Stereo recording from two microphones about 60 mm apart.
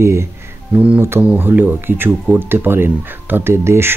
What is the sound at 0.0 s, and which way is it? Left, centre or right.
Speech, right.